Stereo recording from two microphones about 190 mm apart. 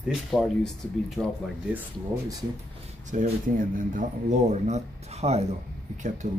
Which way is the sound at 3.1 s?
40° right (ahead or behind).